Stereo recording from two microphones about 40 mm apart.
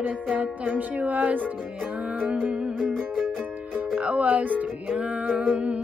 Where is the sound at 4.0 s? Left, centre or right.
Right.